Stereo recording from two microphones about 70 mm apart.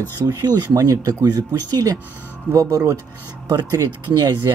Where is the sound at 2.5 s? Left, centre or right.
Right.